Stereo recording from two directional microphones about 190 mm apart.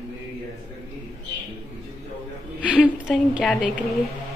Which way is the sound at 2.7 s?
5° right (ahead or behind).